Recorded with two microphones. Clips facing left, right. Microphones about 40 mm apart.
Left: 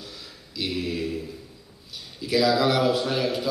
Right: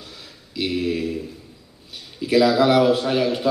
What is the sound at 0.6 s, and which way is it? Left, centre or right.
Mantra, centre.